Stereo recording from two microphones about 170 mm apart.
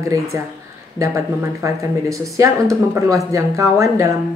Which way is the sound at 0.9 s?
20° right (ahead or behind).